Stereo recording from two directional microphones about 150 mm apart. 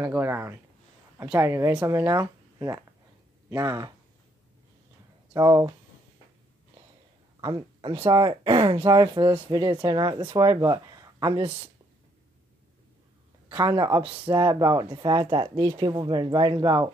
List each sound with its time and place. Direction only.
0.0 s speech: 15° right (ahead or behind)
5.3 s speech: 25° right (ahead or behind)
7.3 s speech: 30° right (ahead or behind)
13.6 s speech: 25° right (ahead or behind)